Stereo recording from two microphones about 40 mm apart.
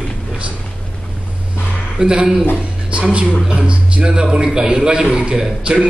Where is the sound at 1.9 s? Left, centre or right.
Centre.